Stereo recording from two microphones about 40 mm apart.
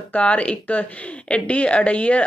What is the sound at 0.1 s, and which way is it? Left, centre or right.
Speech, left.